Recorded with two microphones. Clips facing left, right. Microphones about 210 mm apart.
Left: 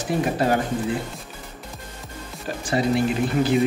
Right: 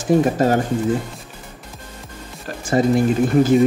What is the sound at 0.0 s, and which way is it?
Speech, 45° right (ahead or behind).